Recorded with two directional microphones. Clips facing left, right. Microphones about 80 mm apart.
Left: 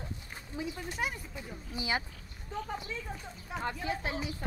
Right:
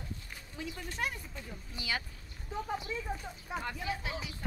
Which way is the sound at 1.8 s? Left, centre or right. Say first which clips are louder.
Left 4 dB; left.